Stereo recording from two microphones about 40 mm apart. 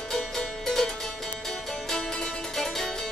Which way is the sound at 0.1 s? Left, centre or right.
Centre.